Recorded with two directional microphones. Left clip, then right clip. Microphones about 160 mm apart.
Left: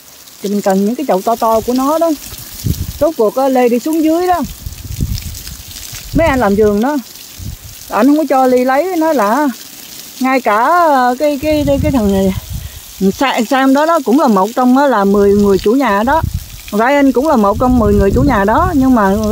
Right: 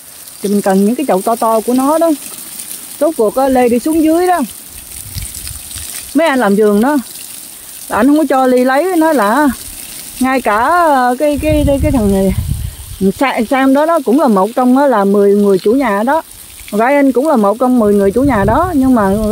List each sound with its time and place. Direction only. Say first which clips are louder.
0.4 s speech: right 1 dB; 20° right (ahead or behind)
3.0 s speech: even; 15° right (ahead or behind)
6.1 s speech: even; 25° right (ahead or behind); by 19.2 s centre (ahead or behind)